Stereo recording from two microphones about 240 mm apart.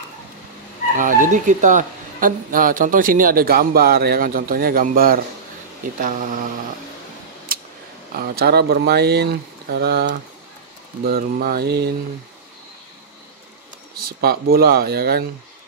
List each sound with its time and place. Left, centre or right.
0.9 s speech: right
7.5 s a sound: right
8.2 s speech: right
14.0 s speech: right